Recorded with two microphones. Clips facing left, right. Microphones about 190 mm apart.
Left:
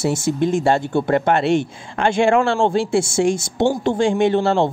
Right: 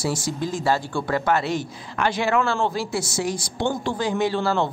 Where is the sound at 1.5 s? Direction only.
25° left (ahead or behind).